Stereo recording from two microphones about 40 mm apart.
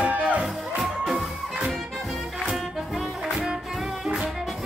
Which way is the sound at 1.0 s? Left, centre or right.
Centre.